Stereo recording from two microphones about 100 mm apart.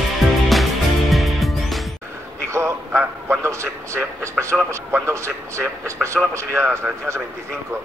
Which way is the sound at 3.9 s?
30° right (ahead or behind).